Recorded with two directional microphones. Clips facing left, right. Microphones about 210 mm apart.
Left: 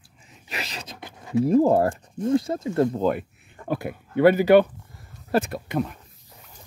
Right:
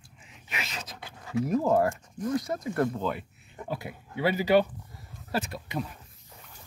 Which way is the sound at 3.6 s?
55° left (ahead or behind).